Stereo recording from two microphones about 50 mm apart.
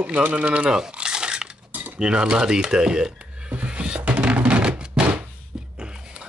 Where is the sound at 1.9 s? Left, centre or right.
Centre.